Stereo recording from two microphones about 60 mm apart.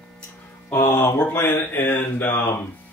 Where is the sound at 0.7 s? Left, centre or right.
Left.